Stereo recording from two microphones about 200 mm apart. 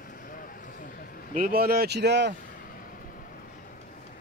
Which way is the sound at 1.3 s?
45° right (ahead or behind).